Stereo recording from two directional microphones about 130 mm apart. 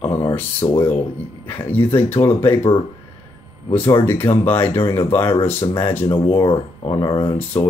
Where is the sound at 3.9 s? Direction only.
15° left (ahead or behind).